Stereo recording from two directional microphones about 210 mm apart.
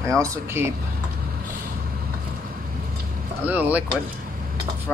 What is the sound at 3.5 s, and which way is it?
Speech, 10° right (ahead or behind).